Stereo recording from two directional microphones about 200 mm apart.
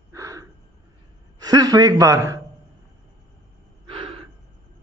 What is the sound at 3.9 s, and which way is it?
Gasp, 25° right (ahead or behind).